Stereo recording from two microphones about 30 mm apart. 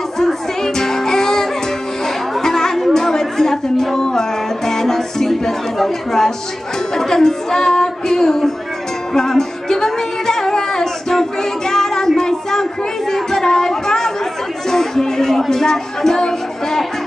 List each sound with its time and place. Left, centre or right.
0.2 s music: centre
2.4 s chatter: centre
3.9 s music: centre
5.4 s speech: centre
9.1 s music: centre
12.2 s a sound: centre
14.7 s music: centre